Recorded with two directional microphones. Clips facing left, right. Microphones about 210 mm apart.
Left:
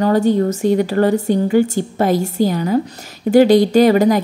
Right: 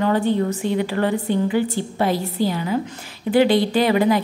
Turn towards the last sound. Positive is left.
turn(degrees=45)  # may be behind; listen again after turning